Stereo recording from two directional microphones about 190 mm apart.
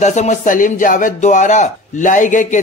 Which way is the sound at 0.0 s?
40° left (ahead or behind).